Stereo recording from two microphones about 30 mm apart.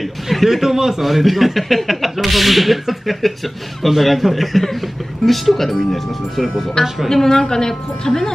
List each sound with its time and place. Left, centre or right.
0.3 s a man's voice: centre
7.1 s a woman's voice: centre